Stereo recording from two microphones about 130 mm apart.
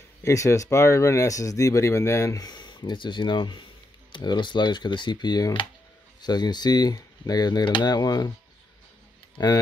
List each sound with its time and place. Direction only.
0.2 s speech: 25° left (ahead or behind)